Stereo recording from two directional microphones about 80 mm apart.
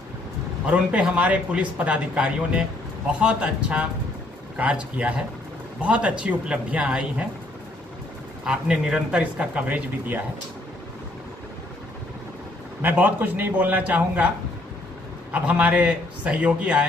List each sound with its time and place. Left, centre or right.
0.7 s speech: centre
8.5 s speech: centre
12.8 s a man's voice: right
15.3 s speech: right